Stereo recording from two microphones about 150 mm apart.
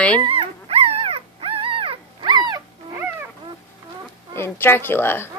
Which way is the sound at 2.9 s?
15° right (ahead or behind).